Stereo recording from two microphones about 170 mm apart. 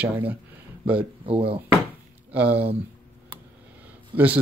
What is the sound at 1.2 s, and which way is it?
Speech, 35° right (ahead or behind).